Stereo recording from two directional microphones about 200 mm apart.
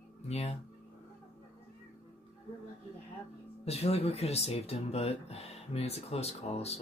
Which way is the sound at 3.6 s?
30° left (ahead or behind).